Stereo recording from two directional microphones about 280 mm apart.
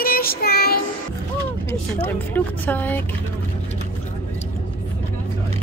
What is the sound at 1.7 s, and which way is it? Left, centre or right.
Speech, centre.